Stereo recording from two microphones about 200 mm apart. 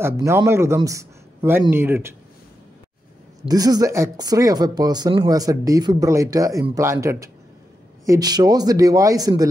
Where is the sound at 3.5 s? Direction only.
20° right (ahead or behind).